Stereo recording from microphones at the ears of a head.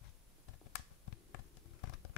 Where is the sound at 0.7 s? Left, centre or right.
Left.